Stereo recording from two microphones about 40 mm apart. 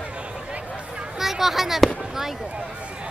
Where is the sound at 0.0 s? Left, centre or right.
Right.